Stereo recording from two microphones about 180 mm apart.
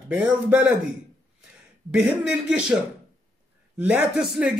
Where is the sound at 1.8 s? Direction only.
5° right (ahead or behind).